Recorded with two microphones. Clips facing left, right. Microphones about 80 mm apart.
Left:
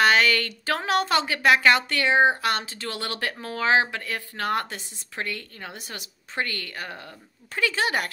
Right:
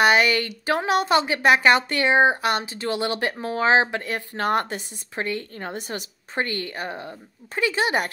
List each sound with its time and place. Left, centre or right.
0.0 s speech: centre
5.7 s speech: right